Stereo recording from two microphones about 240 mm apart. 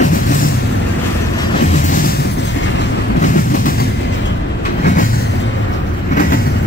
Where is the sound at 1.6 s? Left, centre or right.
Left.